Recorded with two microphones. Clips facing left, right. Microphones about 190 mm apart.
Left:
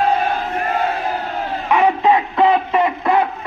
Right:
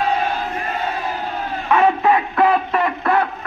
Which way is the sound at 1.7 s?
15° left (ahead or behind).